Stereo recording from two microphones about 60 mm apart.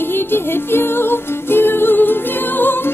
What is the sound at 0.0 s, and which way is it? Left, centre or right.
Music, left.